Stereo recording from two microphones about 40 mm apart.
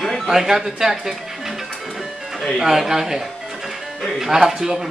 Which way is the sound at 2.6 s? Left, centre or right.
Centre.